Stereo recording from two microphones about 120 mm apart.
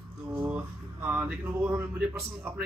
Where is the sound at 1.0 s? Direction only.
15° right (ahead or behind).